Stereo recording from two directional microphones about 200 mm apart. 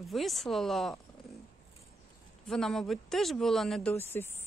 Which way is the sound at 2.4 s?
Centre (ahead or behind).